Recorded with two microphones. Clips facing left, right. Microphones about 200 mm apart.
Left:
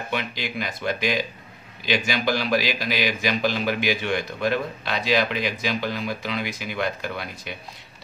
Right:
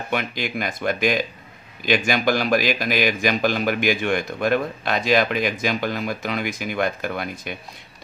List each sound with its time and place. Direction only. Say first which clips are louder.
0.1 s a man's voice: right 4 dB; 50° right (ahead or behind)